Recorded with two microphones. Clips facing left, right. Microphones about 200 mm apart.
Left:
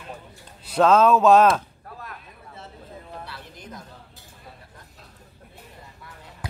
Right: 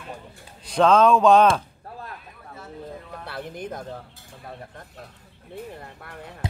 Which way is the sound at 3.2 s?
55° right (ahead or behind).